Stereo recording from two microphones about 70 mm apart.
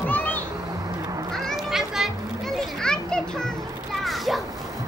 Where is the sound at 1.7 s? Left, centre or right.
Centre.